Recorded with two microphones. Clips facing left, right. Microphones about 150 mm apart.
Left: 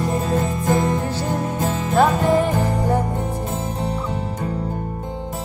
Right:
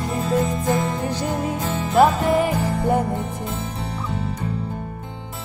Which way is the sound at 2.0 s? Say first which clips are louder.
Even; 10° right (ahead or behind).